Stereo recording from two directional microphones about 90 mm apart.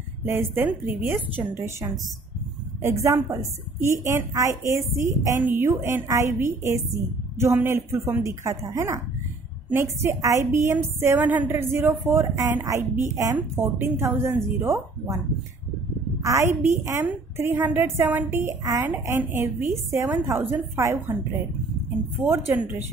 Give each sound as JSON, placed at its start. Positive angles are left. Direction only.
{"t": 0.2, "sound": "a woman's voice", "side_deg": -25}
{"t": 5.4, "sound": "a woman's voice", "side_deg": -25}
{"t": 11.1, "sound": "a woman's voice", "side_deg": -20}
{"t": 16.2, "sound": "a woman's voice", "side_deg": -35}
{"t": 18.6, "sound": "a woman's voice", "side_deg": -40}
{"t": 22.6, "sound": "a woman's voice", "side_deg": -20}